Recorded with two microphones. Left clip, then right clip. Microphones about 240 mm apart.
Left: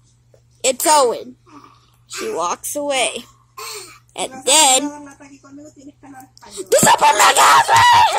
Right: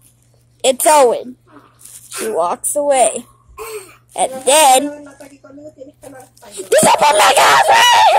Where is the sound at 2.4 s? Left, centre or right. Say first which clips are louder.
Right 6 dB; centre.